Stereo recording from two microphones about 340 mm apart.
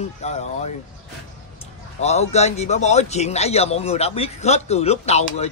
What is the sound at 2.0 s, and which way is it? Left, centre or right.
A man's voice, centre.